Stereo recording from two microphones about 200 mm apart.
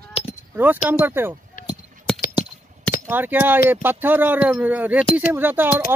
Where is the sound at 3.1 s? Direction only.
10° right (ahead or behind).